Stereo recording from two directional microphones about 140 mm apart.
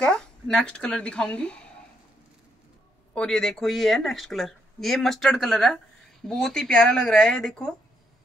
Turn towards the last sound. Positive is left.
turn(degrees=5)  # may be behind; listen again after turning